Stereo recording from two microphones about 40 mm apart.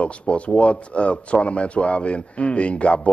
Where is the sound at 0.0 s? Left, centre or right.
Left.